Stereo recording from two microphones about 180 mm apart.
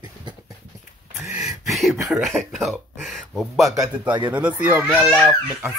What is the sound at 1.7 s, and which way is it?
A child's voice, centre (ahead or behind).